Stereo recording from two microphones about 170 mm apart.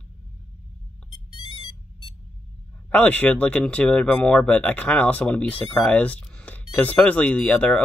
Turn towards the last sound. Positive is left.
turn(degrees=5)  # may be behind; listen again after turning